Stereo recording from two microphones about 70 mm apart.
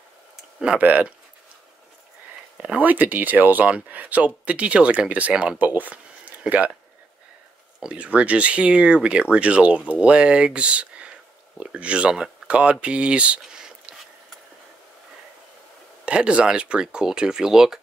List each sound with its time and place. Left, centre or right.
0.7 s speech: right
2.5 s speech: centre
5.6 s a sound: right
7.8 s speech: centre
13.4 s a sound: centre
16.1 s speech: centre